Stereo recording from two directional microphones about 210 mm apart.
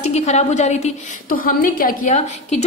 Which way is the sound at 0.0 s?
30° left (ahead or behind).